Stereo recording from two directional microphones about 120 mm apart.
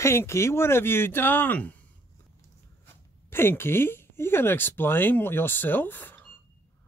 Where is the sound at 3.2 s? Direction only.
20° left (ahead or behind).